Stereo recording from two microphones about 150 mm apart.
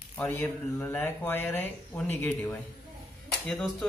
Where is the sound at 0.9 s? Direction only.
15° left (ahead or behind).